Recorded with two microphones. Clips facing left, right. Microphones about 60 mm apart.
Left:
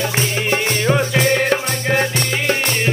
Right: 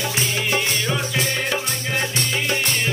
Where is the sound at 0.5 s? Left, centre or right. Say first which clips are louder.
Left 7 dB; left.